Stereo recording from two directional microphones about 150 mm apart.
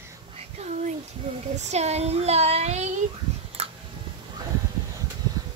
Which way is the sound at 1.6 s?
45° right (ahead or behind).